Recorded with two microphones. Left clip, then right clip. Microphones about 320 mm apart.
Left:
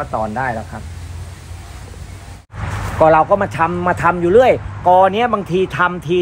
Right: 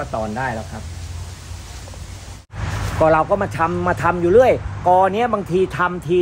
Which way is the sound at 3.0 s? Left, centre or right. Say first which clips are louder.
Left 4 dB; centre.